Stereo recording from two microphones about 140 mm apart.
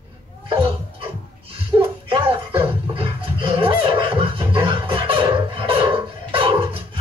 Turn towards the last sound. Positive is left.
turn(degrees=-40)  # may be behind; listen again after turning